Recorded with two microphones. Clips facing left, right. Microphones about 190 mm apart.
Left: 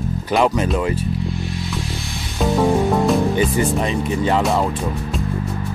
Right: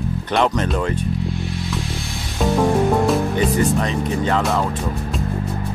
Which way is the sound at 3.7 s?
15° left (ahead or behind).